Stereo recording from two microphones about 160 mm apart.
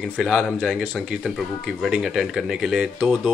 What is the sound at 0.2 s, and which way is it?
Speech, centre (ahead or behind).